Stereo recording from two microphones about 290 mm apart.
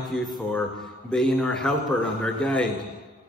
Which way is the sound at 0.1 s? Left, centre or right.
Centre.